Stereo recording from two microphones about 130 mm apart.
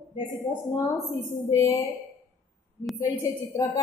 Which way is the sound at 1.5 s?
20° left (ahead or behind).